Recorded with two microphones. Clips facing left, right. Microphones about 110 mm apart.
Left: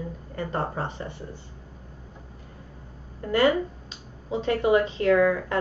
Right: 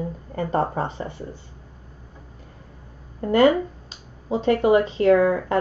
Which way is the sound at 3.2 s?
35° right (ahead or behind).